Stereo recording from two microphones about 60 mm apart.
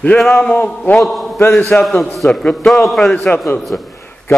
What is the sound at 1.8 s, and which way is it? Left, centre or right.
A man's voice, centre.